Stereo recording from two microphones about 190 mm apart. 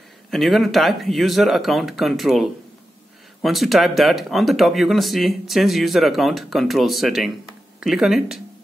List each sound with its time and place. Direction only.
0.3 s speech: centre (ahead or behind)